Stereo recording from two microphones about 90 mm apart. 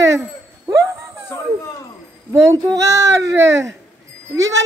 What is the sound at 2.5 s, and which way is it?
Child singing, 35° right (ahead or behind).